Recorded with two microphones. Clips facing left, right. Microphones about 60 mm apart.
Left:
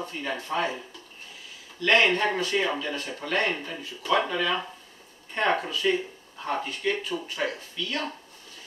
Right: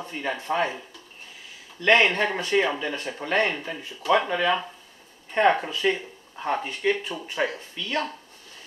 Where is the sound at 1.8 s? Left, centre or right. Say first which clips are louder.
Right 4 dB; right.